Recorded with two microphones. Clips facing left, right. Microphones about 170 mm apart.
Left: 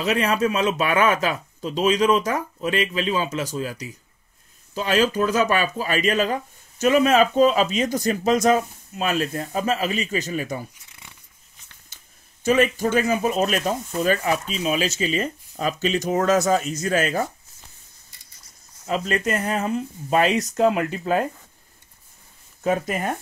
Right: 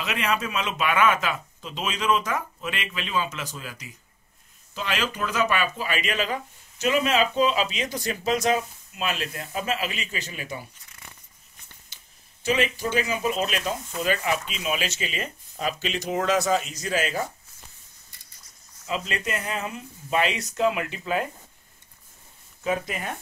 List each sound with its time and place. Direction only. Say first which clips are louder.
0.0 s speech: left 7 dB; 40° left (ahead or behind)
12.4 s speech: left 6 dB; 50° left (ahead or behind)
18.9 s speech: left 6 dB; 45° left (ahead or behind)
22.6 s speech: left 5 dB; 45° left (ahead or behind)